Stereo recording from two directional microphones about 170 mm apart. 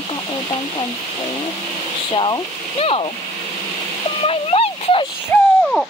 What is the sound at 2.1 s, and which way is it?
Speech, 30° left (ahead or behind).